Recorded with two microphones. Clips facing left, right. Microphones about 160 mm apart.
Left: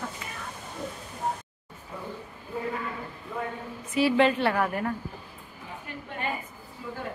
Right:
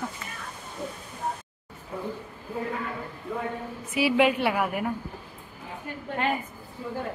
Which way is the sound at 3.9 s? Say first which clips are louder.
Even; 10° right (ahead or behind).